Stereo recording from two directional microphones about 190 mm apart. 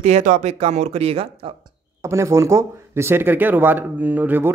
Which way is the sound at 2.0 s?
15° right (ahead or behind).